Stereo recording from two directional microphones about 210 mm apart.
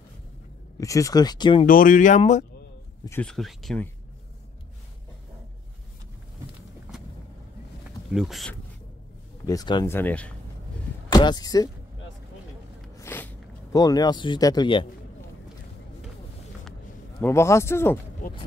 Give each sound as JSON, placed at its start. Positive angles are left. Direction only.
{"t": 0.7, "sound": "speech", "side_deg": 15}
{"t": 1.7, "sound": "speech", "side_deg": 40}
{"t": 3.1, "sound": "speech", "side_deg": 5}
{"t": 8.1, "sound": "speech", "side_deg": 0}
{"t": 9.5, "sound": "a man's voice", "side_deg": 20}
{"t": 9.9, "sound": "a man's voice", "side_deg": 5}
{"t": 11.1, "sound": "speech", "side_deg": 20}
{"t": 12.9, "sound": "a sound", "side_deg": 10}
{"t": 17.2, "sound": "a man's voice", "side_deg": 15}